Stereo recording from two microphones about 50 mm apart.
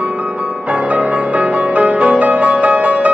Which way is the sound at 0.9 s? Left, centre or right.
Right.